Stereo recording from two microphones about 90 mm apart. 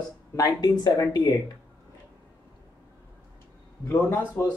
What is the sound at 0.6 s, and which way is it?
Speech, 50° left (ahead or behind).